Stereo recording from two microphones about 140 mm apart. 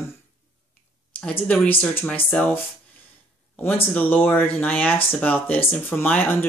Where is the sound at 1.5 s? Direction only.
15° left (ahead or behind).